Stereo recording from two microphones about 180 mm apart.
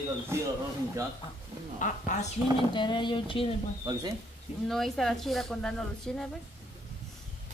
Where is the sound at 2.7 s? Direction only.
25° left (ahead or behind).